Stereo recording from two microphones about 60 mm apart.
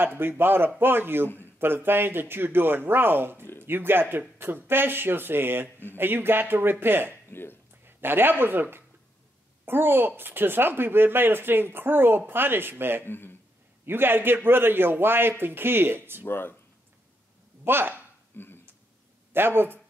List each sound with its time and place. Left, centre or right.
0.0 s a man's voice: right
13.0 s speech: left
13.8 s speech: right
16.3 s speech: left
17.6 s speech: right
18.3 s a sound: left
19.3 s speech: right